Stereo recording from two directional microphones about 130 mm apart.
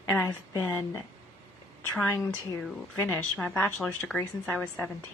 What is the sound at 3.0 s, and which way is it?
A woman's voice, 10° left (ahead or behind).